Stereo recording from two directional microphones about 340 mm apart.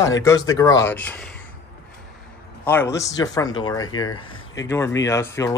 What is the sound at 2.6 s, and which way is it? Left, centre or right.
Speech, centre.